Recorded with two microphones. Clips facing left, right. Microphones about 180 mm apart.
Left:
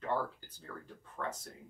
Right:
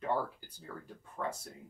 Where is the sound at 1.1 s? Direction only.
10° right (ahead or behind).